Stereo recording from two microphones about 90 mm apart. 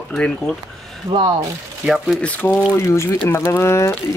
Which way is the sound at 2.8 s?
30° left (ahead or behind).